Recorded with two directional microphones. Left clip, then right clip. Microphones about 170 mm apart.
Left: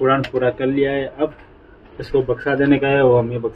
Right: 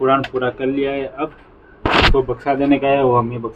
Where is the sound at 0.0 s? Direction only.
10° right (ahead or behind).